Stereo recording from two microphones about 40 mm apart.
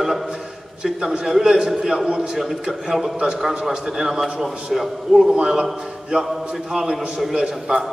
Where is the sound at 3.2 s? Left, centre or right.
Centre.